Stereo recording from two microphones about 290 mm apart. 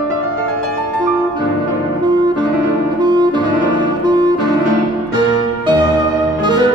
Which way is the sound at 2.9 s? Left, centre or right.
Centre.